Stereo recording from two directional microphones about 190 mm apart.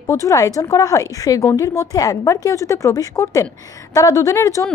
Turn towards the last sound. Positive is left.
turn(degrees=15)  # may be behind; listen again after turning